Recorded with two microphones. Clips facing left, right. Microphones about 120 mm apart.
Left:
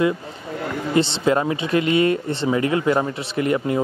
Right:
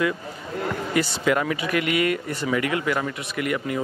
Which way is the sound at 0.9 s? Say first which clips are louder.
Left 4 dB; 25° left (ahead or behind).